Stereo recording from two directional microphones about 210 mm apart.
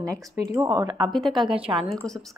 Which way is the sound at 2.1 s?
Centre (ahead or behind).